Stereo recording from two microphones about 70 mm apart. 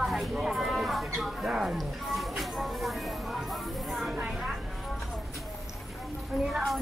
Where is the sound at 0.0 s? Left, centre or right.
Centre.